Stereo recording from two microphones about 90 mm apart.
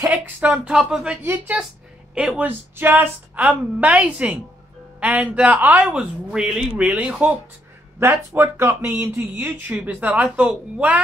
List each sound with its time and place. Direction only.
0.4 s speech: 15° right (ahead or behind)
1.2 s speech: 25° right (ahead or behind)
2.1 s speech: 10° right (ahead or behind)
3.4 s speech: 15° right (ahead or behind)
8.4 s speech: 30° right (ahead or behind)